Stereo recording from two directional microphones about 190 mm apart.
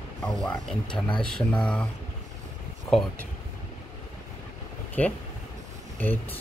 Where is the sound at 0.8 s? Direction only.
25° left (ahead or behind).